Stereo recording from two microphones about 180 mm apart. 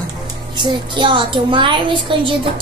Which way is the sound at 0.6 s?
25° right (ahead or behind).